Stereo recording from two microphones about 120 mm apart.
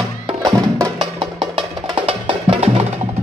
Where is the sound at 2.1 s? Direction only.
50° right (ahead or behind).